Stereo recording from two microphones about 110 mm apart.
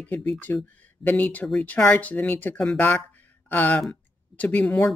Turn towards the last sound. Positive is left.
turn(degrees=15)  # may be behind; listen again after turning